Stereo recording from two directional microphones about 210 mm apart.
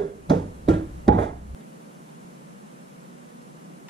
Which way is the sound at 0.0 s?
55° right (ahead or behind).